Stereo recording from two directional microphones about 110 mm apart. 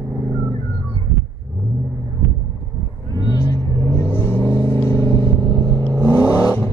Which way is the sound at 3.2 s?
35° left (ahead or behind).